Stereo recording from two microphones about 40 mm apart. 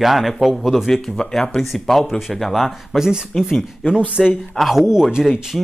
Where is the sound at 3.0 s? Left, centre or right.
Centre.